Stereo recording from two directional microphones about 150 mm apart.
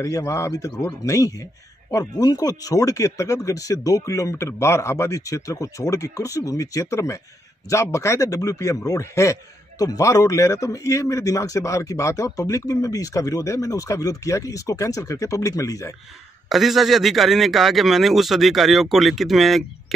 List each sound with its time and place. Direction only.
0.0 s a man's voice: 20° left (ahead or behind)
16.4 s a man's voice: centre (ahead or behind)